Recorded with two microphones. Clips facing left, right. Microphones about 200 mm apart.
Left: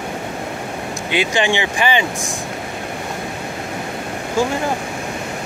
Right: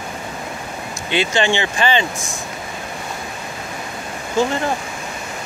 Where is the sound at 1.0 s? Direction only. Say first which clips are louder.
Even; 15° left (ahead or behind).